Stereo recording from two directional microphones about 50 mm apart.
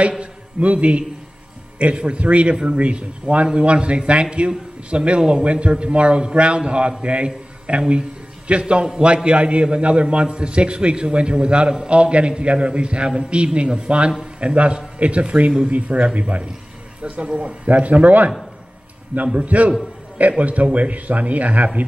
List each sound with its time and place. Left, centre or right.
0.2 s a man's voice: right